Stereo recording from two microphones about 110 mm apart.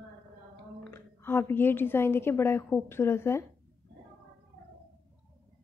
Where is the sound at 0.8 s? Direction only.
20° left (ahead or behind).